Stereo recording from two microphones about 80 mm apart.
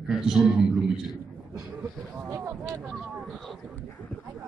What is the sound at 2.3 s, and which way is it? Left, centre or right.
Speech, right.